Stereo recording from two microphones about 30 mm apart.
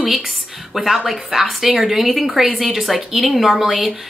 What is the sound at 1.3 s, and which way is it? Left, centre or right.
Speech, right.